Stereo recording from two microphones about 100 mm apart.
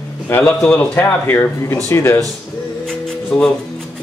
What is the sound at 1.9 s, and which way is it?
Speech, 30° left (ahead or behind).